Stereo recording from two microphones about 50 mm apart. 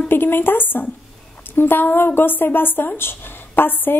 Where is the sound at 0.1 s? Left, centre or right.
Left.